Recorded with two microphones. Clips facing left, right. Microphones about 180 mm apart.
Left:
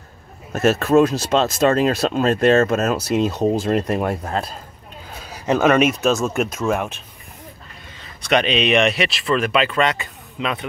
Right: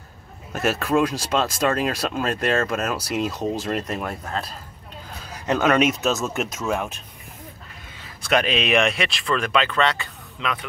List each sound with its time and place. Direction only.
0.5 s a man's voice: 40° left (ahead or behind)
1.3 s speech: 25° left (ahead or behind)
5.3 s speech: 10° left (ahead or behind)
8.0 s speech: 5° right (ahead or behind); by 10.7 s 20° left (ahead or behind)